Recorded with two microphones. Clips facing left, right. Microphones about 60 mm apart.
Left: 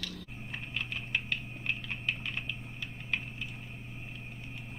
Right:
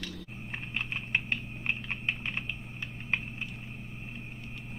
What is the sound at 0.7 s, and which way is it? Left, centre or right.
Typing, right.